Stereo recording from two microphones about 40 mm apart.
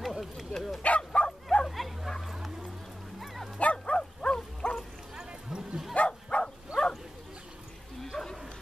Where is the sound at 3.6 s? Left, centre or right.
Left.